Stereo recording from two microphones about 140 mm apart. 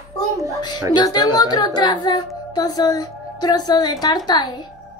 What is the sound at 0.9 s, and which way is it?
A woman's voice, 30° left (ahead or behind).